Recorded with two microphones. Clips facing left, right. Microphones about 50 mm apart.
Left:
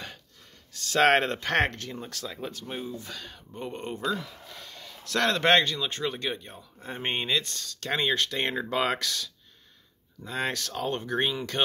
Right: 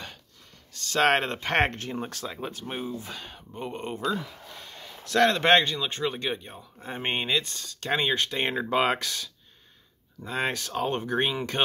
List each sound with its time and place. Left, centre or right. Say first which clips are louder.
0.7 s speech: left 1 dB; centre; by 3.4 s right
3.5 s speech: right 1 dB; centre